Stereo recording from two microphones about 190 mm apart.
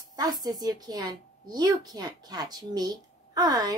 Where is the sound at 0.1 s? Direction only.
20° right (ahead or behind).